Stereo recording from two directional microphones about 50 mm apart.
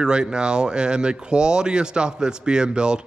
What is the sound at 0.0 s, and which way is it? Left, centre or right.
A man's voice, centre.